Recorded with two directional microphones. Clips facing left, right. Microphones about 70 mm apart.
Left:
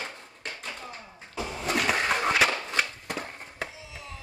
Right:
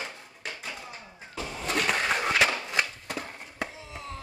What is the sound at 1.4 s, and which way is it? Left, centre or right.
Vehicle, centre.